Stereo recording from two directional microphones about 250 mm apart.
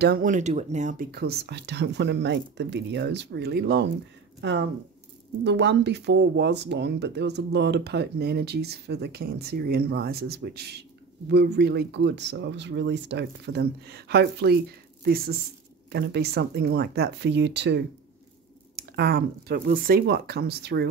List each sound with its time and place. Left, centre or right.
0.0 s speech: right